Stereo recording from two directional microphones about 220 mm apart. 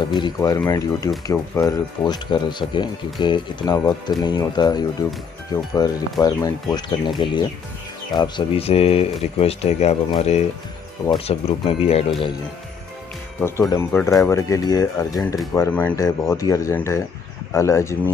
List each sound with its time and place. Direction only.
0.1 s speech: 20° left (ahead or behind)
13.4 s speech: 10° left (ahead or behind)